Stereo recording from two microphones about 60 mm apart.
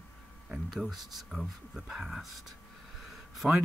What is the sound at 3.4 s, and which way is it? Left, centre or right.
Speech, centre.